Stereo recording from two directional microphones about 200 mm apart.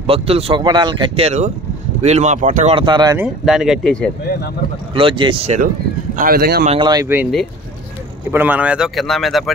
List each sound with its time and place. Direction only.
0.0 s speech: 30° right (ahead or behind)
3.2 s speech: centre (ahead or behind)
4.9 s speech: 25° right (ahead or behind)
6.1 s speech: 45° right (ahead or behind)
6.7 s speech: 20° right (ahead or behind)
8.3 s speech: 10° right (ahead or behind)